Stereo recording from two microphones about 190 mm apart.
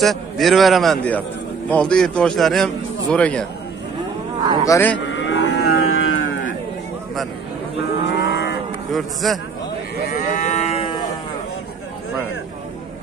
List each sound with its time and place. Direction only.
0.0 s a man's voice: centre (ahead or behind)
4.6 s speech: 10° left (ahead or behind)
5.0 s livestock: 75° left (ahead or behind)
8.0 s cattle: 60° left (ahead or behind)
8.9 s a man's voice: centre (ahead or behind)
10.0 s moo: 40° left (ahead or behind)